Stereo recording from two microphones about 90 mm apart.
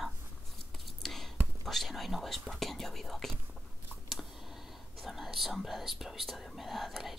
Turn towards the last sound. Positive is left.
turn(degrees=0)  # may be behind; listen again after turning